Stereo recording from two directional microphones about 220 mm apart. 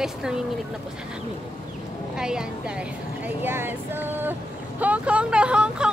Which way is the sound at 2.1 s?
5° right (ahead or behind).